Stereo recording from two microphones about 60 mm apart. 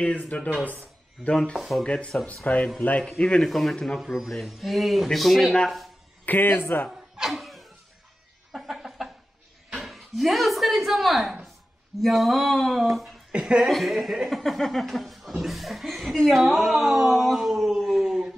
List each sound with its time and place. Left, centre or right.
0.3 s speech: left
1.3 s speech: centre
1.9 s speech: centre
3.4 s speech: centre
4.0 s speech: centre
6.2 s speech: left
7.2 s a sound: centre
9.8 s speech: centre
13.3 s chuckle: centre
13.7 s speech: centre
17.1 s a sound: centre